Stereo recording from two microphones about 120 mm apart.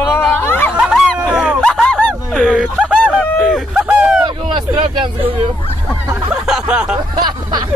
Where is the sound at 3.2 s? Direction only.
5° left (ahead or behind).